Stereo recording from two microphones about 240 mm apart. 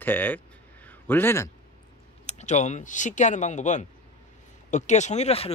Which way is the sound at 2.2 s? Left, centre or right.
Left.